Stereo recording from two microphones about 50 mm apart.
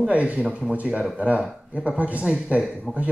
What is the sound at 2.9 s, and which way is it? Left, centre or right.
Speech, right.